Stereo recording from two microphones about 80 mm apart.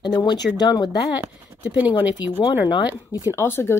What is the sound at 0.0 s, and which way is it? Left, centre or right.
Speech, left.